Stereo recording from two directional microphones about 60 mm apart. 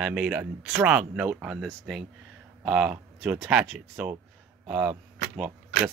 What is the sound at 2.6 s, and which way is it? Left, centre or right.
Speech, centre.